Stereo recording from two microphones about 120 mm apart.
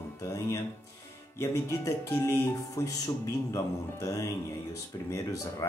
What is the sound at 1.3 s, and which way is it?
Speech, 25° left (ahead or behind).